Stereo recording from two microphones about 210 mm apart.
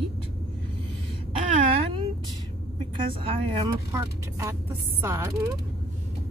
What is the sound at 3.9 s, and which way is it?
Speech, 10° right (ahead or behind).